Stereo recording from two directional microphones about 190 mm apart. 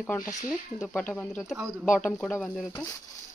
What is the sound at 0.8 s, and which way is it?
Speech, 5° left (ahead or behind).